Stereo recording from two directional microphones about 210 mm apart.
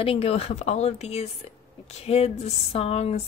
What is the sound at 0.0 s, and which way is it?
Speech, 25° left (ahead or behind).